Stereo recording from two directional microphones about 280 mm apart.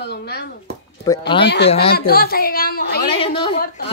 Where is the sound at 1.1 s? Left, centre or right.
Centre.